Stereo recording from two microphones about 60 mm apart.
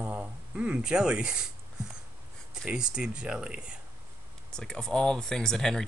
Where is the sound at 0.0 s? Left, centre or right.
Right.